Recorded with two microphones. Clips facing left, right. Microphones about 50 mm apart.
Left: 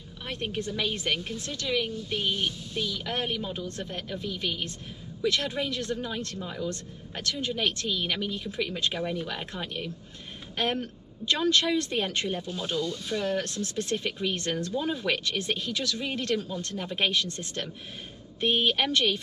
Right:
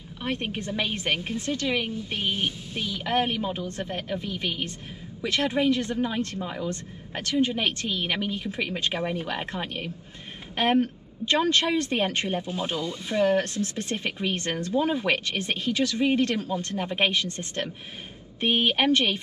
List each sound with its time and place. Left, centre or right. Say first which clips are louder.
0.2 s a woman's voice: right 3 dB; right
18.4 s a woman's voice: right 2 dB; right